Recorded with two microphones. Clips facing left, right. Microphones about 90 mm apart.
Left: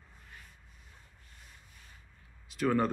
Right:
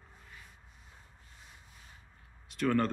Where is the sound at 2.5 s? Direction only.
5° left (ahead or behind).